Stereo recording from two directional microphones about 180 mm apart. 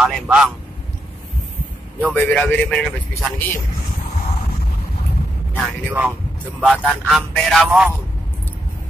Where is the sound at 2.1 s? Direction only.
10° left (ahead or behind).